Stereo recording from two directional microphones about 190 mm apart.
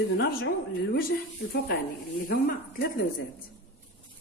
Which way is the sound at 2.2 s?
55° left (ahead or behind).